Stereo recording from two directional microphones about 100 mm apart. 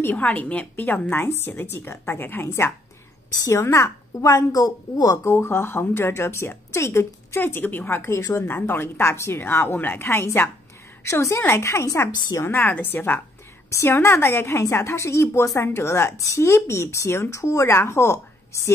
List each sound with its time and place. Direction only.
0.0 s a woman's voice: 15° left (ahead or behind)